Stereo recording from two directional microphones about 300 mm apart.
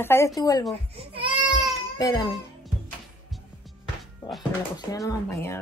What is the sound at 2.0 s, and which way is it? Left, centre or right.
Speech, centre.